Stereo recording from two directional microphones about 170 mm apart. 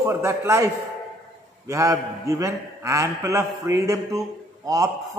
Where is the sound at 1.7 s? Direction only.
20° right (ahead or behind).